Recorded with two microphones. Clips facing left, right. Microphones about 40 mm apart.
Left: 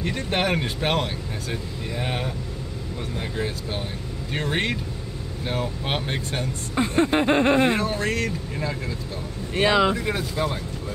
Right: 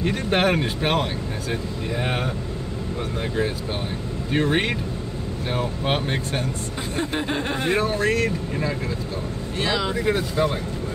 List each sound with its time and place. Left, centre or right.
0.0 s speech: centre
1.5 s speech: centre
6.8 s a sound: left
7.7 s speech: centre
9.6 s speech: left
10.0 s speech: centre